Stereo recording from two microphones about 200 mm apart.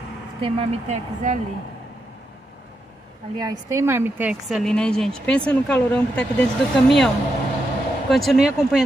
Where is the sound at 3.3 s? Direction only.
20° right (ahead or behind); by 6.5 s 5° left (ahead or behind).